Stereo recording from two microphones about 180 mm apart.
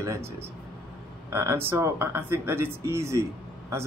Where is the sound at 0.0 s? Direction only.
15° right (ahead or behind).